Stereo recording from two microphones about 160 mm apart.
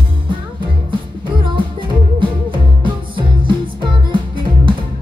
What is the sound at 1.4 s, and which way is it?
Music, 30° right (ahead or behind).